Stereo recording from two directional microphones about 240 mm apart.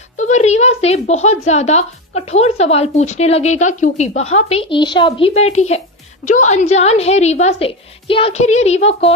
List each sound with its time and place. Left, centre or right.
0.2 s speech: left